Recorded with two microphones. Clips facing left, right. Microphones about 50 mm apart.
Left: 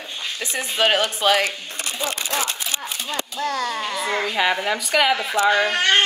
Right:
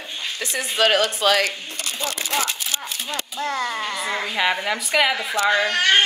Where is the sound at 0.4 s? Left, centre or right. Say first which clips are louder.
Right 1 dB; left.